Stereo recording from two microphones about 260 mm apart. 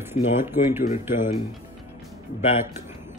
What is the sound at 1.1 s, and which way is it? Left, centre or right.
Speech, left.